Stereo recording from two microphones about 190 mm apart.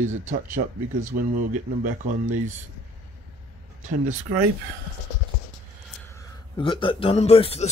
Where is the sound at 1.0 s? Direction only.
45° right (ahead or behind).